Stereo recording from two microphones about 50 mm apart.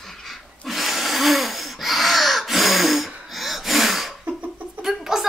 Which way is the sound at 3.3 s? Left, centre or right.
Centre.